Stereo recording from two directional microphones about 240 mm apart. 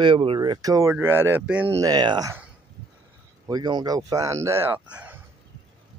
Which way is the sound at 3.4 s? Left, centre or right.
Centre.